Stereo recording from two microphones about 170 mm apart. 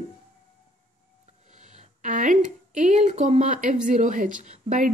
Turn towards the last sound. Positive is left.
turn(degrees=-45)  # may be behind; listen again after turning